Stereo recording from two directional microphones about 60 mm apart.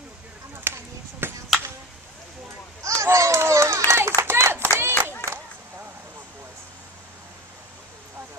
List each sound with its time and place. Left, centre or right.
0.7 s basketball bounce: right
1.2 s chop: right
2.8 s a sound: right
4.2 s clapping: right